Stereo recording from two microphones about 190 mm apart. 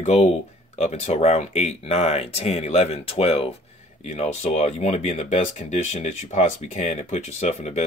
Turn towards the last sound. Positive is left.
turn(degrees=35)  # may be behind; listen again after turning